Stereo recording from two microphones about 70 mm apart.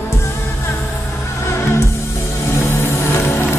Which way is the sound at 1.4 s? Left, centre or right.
Left.